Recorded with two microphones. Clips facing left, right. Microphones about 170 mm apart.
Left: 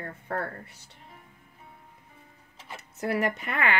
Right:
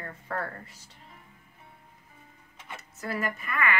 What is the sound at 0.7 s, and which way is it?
Speech, 65° left (ahead or behind).